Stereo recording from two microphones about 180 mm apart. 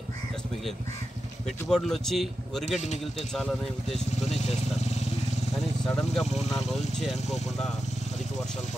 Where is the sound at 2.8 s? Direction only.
40° left (ahead or behind).